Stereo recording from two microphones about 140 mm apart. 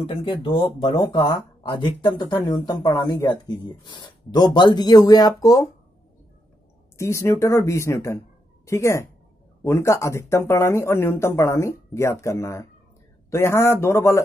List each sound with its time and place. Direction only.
0.0 s speech: 40° left (ahead or behind)
7.0 s a woman's voice: 20° left (ahead or behind)